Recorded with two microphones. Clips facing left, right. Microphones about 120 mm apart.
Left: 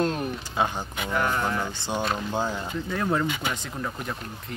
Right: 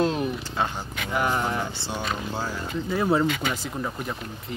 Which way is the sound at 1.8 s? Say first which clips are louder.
Left 2 dB; 15° left (ahead or behind).